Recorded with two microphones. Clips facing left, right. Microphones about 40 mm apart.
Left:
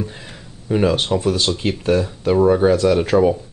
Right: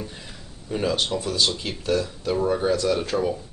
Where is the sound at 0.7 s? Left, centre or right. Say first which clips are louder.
Left 7 dB; left.